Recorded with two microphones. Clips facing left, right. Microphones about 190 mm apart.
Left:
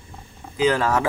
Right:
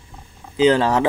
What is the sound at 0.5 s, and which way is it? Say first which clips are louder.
Speech: right 4 dB; 30° right (ahead or behind).